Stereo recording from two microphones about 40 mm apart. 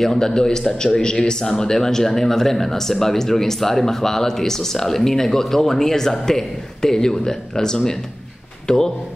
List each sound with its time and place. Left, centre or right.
0.0 s speech: centre